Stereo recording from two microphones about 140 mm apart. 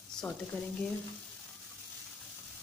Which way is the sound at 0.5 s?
15° left (ahead or behind).